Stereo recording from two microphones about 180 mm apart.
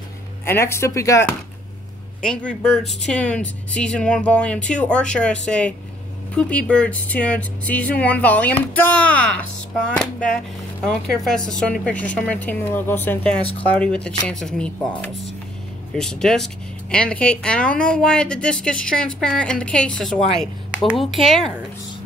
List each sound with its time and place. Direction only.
0.5 s speech: 15° left (ahead or behind)
2.2 s speech: 5° left (ahead or behind)
13.4 s speech: 30° left (ahead or behind)
13.7 s speech: 5° left (ahead or behind)